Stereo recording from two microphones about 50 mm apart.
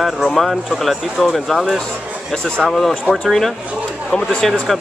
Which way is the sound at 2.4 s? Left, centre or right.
Centre.